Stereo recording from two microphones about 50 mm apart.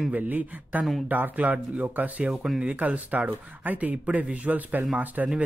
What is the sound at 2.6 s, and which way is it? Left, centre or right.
Speech, right.